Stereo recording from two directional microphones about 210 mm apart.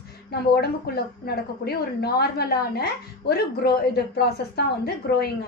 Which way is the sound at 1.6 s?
50° left (ahead or behind).